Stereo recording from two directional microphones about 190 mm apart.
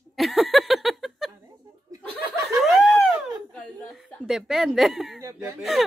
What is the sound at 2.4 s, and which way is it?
Snicker, centre (ahead or behind).